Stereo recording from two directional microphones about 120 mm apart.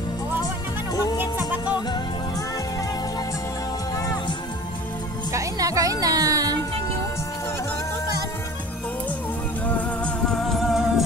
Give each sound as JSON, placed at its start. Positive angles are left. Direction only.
{"t": 5.3, "sound": "music", "side_deg": -30}
{"t": 9.7, "sound": "music", "side_deg": 10}